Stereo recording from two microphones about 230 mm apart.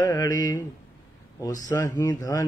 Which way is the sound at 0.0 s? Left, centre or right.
Centre.